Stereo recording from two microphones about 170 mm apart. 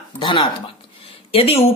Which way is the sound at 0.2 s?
30° left (ahead or behind).